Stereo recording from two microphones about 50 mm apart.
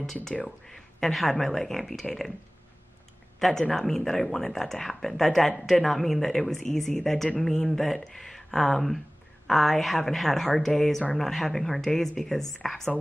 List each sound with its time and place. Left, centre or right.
0.0 s speech: centre
3.3 s speech: centre